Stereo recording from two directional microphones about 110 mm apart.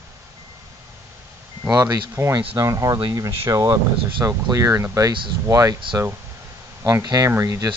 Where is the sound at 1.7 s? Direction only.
30° right (ahead or behind).